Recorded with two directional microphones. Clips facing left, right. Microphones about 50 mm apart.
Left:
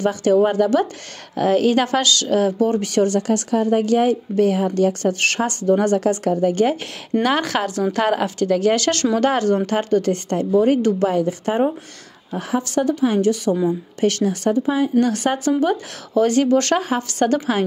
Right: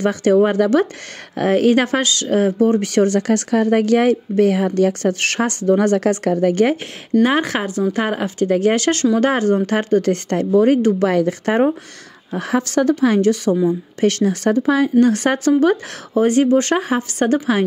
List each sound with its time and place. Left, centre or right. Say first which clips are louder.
0.0 s speech: right 2 dB; right
7.2 s a woman's voice: right 1 dB; right
8.5 s a woman's voice: right 2 dB; right
11.1 s a woman's voice: right 3 dB; right
14.0 s speech: right 2 dB; right
16.2 s a woman's voice: right 2 dB; right